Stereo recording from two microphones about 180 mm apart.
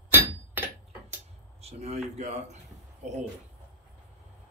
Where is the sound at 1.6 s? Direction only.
35° right (ahead or behind).